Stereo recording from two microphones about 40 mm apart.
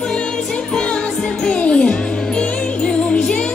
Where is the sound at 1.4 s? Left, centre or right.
Left.